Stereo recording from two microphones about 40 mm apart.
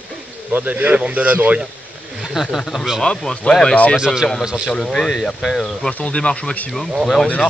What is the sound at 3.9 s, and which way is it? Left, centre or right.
Speech, centre.